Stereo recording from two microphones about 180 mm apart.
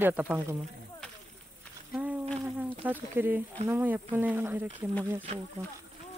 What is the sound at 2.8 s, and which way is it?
Speech, 10° right (ahead or behind).